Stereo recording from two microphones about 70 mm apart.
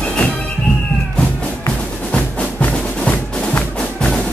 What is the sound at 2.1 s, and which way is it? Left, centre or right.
Music, centre.